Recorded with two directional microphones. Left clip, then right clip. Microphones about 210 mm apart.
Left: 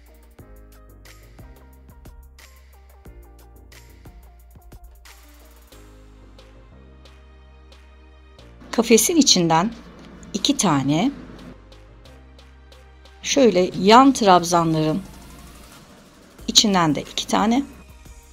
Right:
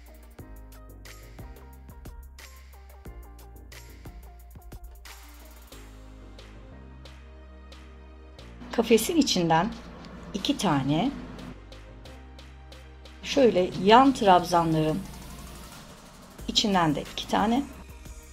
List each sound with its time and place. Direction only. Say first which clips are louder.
8.6 s speech: left 6 dB; 40° left (ahead or behind)
11.3 s music: left 1 dB; centre (ahead or behind)
13.2 s speech: left 5 dB; 40° left (ahead or behind)
16.4 s a woman's voice: left 7 dB; 40° left (ahead or behind)